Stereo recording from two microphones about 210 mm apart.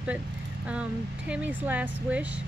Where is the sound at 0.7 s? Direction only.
5° right (ahead or behind).